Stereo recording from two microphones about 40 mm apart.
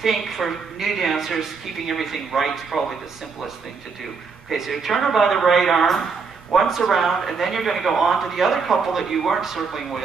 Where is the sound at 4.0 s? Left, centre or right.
Centre.